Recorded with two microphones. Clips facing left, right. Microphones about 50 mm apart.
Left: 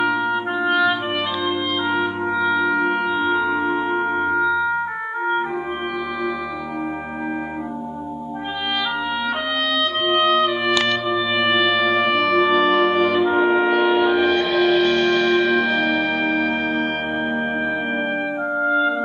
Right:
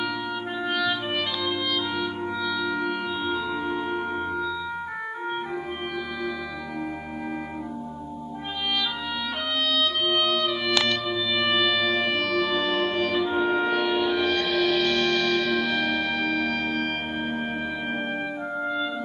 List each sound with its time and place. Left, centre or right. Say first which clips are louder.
0.0 s clarinet: left 9 dB; left
1.9 s music: left 7 dB; left
10.0 s music: left 7 dB; left
18.6 s music: left 10 dB; left